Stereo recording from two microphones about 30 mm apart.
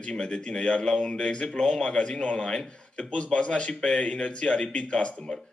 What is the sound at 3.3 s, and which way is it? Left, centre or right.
Speech, left.